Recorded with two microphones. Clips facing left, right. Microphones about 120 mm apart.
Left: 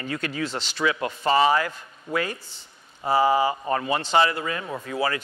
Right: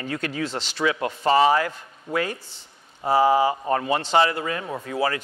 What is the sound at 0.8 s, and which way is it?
A man's voice, 50° right (ahead or behind).